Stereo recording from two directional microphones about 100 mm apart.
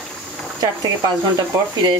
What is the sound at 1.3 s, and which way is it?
Speech, 45° right (ahead or behind).